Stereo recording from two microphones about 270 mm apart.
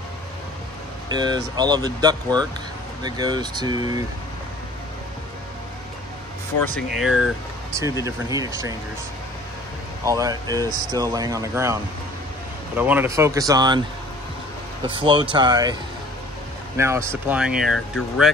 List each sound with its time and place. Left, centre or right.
1.1 s speech: centre
6.9 s speech: centre
10.0 s speech: centre
14.9 s speech: centre